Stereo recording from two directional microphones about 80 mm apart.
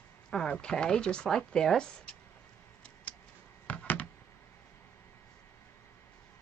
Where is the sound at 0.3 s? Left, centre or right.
Centre.